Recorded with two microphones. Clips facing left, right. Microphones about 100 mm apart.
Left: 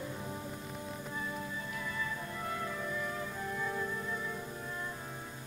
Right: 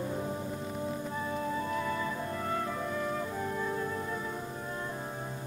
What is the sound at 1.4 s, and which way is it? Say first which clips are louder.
Music: right 8 dB; 45° right (ahead or behind).